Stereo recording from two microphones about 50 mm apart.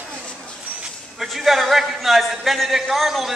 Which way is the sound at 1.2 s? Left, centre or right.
Centre.